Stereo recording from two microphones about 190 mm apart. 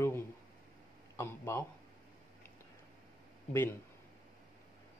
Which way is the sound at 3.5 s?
10° left (ahead or behind).